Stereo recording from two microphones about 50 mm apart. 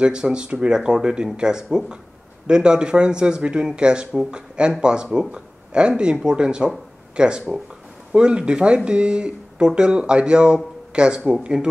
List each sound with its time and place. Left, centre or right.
0.0 s a man's voice: centre